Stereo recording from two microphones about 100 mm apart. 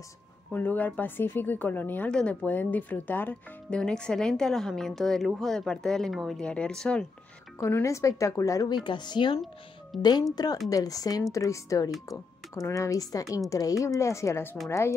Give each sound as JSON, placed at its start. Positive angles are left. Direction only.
{"t": 0.5, "sound": "speech", "side_deg": 15}
{"t": 7.8, "sound": "a woman's voice", "side_deg": 30}
{"t": 8.8, "sound": "speech", "side_deg": 50}
{"t": 9.9, "sound": "speech", "side_deg": 0}
{"t": 10.3, "sound": "a woman's voice", "side_deg": 40}